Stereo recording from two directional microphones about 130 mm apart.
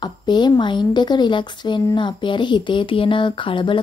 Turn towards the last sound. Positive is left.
turn(degrees=40)  # may be behind; listen again after turning